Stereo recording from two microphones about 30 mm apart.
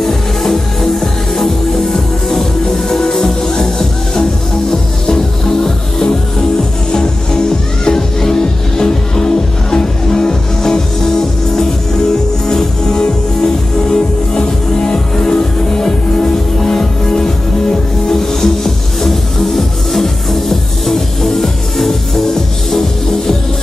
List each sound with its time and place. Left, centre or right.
0.0 s music: centre
1.9 s music: centre
7.8 s music: centre
12.4 s music: left